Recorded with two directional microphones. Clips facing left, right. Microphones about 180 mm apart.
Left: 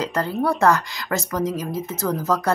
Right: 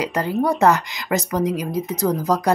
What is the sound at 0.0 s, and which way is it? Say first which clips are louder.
A woman's voice: right 2 dB; 15° right (ahead or behind).